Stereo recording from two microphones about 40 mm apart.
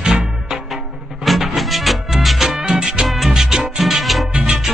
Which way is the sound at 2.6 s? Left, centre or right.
Centre.